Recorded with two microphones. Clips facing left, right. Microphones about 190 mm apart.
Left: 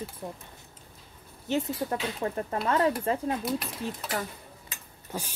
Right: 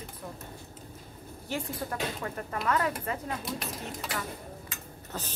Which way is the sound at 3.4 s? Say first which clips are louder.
Left 5 dB; centre (ahead or behind).